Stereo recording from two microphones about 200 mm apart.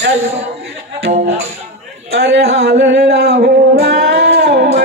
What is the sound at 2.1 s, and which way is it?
Speech, 55° right (ahead or behind).